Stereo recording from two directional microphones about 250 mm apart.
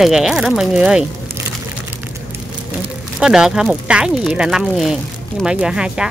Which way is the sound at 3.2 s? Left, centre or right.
Centre.